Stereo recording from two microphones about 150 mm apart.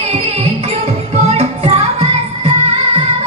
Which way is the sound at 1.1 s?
40° right (ahead or behind).